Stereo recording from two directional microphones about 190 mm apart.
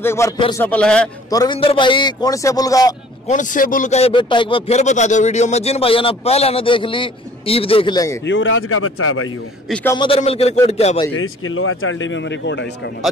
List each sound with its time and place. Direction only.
0.0 s a man's voice: 15° left (ahead or behind)
1.3 s a man's voice: 20° left (ahead or behind)
3.3 s speech: 45° left (ahead or behind); by 8.2 s 20° left (ahead or behind)
8.3 s speech: 90° left
9.8 s speech: 25° left (ahead or behind)
11.1 s speech: 90° left; by 12.6 s 70° left (ahead or behind)